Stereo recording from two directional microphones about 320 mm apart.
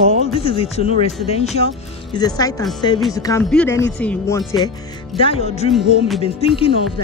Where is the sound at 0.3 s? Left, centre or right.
Centre.